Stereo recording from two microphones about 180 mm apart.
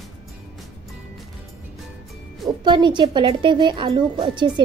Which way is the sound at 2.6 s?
25° right (ahead or behind).